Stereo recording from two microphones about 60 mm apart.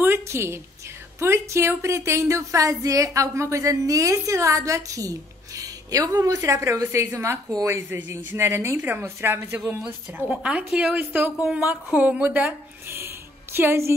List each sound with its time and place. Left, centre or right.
0.0 s a sound: right
1.2 s a woman's voice: right
3.2 s a woman's voice: right
8.7 s a woman's voice: right
9.0 s speech: right
10.1 s a woman's voice: right